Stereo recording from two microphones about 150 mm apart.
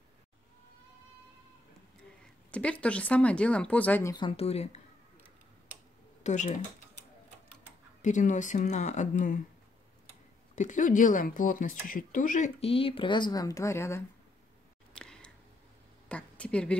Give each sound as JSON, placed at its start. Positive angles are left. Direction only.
{"t": 2.5, "sound": "speech", "side_deg": 10}
{"t": 4.1, "sound": "speech", "side_deg": 35}
{"t": 6.2, "sound": "speech", "side_deg": 55}
{"t": 8.0, "sound": "speech", "side_deg": 55}
{"t": 10.5, "sound": "speech", "side_deg": 55}
{"t": 15.0, "sound": "a sound", "side_deg": 5}